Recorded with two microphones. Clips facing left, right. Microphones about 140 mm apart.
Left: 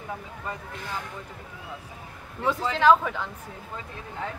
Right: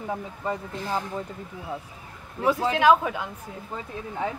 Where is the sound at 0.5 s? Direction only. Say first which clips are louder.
Right 7 dB; 35° right (ahead or behind).